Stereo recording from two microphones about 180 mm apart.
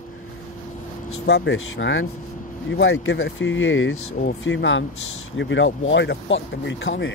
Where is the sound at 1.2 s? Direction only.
75° left (ahead or behind).